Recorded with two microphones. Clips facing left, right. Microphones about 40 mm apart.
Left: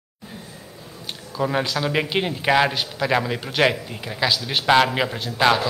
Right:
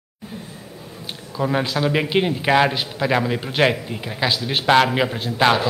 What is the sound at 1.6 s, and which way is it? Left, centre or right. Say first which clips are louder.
A man's voice: right 2 dB; centre.